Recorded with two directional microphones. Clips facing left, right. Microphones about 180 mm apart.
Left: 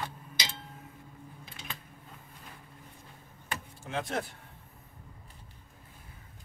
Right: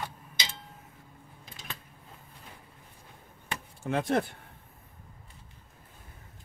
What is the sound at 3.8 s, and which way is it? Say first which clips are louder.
Speech: right 7 dB; 55° right (ahead or behind).